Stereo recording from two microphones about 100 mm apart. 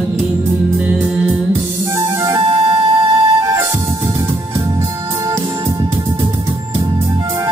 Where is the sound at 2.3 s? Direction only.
45° right (ahead or behind).